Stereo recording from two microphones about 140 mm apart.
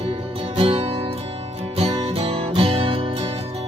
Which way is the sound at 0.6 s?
40° right (ahead or behind).